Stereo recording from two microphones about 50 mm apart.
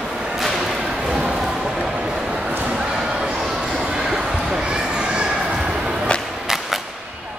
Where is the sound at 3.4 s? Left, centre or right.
Centre.